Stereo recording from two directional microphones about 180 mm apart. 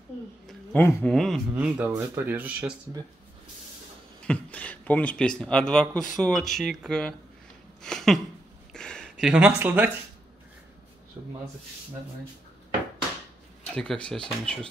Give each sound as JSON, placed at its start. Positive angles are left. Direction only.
{"t": 0.5, "sound": "speech", "side_deg": 5}
{"t": 4.3, "sound": "speech", "side_deg": 10}
{"t": 7.8, "sound": "a sound", "side_deg": 0}
{"t": 9.1, "sound": "speech", "side_deg": -5}
{"t": 11.2, "sound": "speech", "side_deg": -20}
{"t": 13.7, "sound": "speech", "side_deg": 5}